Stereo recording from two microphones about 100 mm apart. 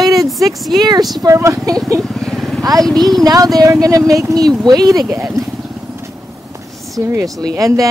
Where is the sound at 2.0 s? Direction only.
5° left (ahead or behind).